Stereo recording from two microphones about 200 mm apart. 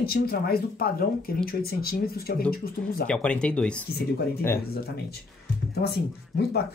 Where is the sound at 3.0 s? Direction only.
5° left (ahead or behind).